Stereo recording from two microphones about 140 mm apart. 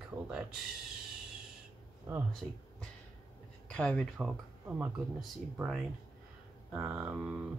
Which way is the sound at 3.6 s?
5° left (ahead or behind).